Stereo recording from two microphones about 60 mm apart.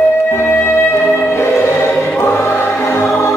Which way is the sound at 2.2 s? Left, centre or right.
Left.